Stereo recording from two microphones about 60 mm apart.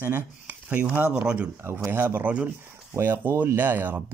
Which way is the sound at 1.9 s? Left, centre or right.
Right.